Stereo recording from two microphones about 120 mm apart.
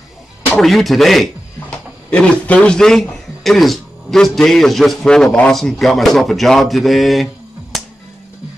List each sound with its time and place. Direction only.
0.6 s a man's voice: centre (ahead or behind)